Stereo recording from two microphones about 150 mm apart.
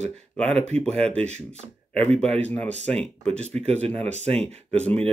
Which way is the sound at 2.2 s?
10° left (ahead or behind).